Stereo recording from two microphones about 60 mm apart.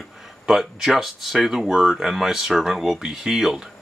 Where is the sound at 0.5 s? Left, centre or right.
Centre.